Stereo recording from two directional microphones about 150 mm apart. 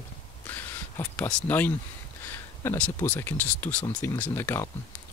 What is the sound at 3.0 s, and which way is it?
Speech, 10° left (ahead or behind).